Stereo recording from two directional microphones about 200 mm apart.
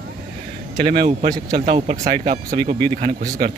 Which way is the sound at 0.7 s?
35° right (ahead or behind).